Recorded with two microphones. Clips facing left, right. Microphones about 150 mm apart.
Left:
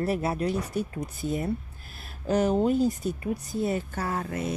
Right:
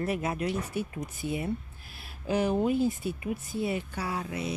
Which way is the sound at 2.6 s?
40° left (ahead or behind).